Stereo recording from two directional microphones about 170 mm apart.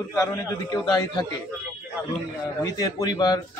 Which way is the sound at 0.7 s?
25° left (ahead or behind).